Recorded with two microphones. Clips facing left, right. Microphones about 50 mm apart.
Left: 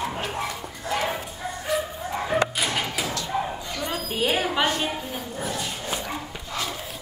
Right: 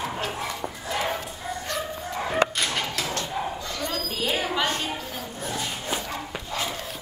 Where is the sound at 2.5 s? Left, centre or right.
Centre.